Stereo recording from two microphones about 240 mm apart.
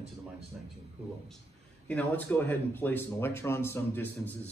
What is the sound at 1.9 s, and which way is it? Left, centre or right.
Speech, centre.